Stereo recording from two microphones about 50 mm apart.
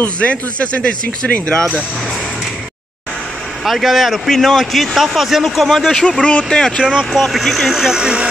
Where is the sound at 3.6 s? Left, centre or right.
Centre.